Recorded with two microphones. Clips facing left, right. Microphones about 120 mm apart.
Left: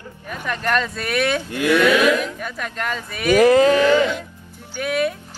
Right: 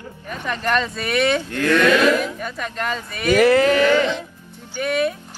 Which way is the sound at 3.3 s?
15° left (ahead or behind).